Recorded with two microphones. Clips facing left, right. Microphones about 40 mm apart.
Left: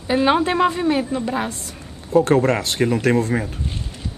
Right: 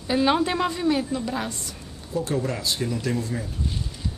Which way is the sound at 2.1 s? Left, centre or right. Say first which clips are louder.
Left 11 dB; left.